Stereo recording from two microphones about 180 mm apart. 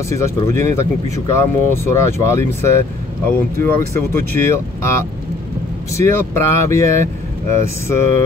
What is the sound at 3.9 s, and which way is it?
Speech, 15° left (ahead or behind).